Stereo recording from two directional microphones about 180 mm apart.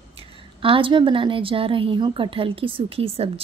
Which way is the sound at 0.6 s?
30° right (ahead or behind).